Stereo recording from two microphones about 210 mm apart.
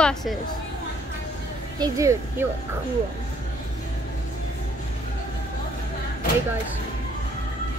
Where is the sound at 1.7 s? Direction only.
15° right (ahead or behind).